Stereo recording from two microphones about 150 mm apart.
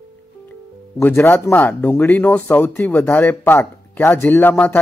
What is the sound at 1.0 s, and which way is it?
Speech, 15° left (ahead or behind).